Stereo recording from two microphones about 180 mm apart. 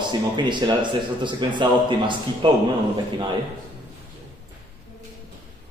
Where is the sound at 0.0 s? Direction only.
25° right (ahead or behind).